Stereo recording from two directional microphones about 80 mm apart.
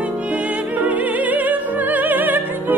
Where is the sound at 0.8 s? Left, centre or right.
Centre.